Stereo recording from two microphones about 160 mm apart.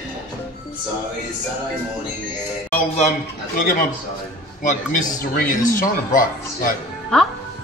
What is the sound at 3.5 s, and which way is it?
Speech, 60° left (ahead or behind).